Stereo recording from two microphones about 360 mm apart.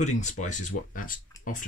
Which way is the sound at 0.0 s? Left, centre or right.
Centre.